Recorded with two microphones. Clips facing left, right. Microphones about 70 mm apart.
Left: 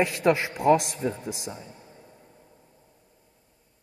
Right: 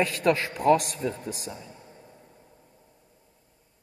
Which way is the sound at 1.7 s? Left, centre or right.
Centre.